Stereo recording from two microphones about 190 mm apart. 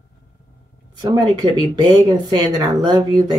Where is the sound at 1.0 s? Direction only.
20° right (ahead or behind).